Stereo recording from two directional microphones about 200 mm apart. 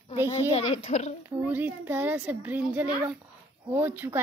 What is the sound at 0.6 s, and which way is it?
Speech, 35° left (ahead or behind).